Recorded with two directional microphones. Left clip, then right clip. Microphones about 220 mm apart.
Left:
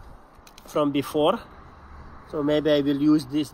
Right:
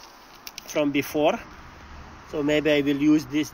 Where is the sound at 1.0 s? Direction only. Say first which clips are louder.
Left 1 dB; 35° left (ahead or behind).